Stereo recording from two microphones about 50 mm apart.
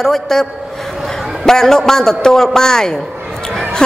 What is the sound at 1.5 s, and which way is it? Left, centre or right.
A woman's voice, centre.